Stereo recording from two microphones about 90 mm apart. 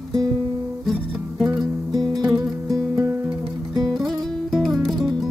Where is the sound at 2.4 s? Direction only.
40° right (ahead or behind).